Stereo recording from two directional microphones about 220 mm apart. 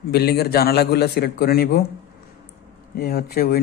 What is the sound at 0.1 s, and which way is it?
A man's voice, 45° left (ahead or behind).